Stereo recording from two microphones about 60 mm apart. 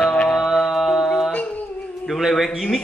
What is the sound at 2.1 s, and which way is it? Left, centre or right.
Speech, centre.